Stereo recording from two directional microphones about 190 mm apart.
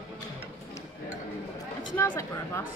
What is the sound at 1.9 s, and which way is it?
Speech, 15° left (ahead or behind).